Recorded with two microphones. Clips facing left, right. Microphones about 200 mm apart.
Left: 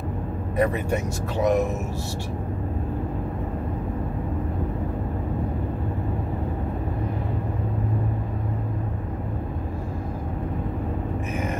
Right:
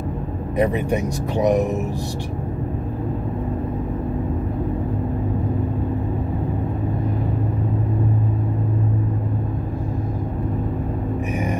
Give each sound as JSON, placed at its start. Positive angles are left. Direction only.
{"t": 0.6, "sound": "speech", "side_deg": -15}